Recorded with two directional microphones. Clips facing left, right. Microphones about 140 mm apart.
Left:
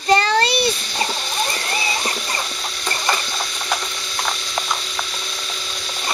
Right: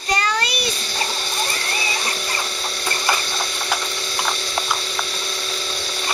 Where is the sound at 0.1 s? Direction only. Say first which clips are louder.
Left 6 dB; 30° left (ahead or behind).